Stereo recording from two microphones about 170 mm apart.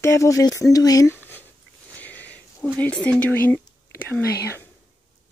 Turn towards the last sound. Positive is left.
turn(degrees=70)  # may be behind; listen again after turning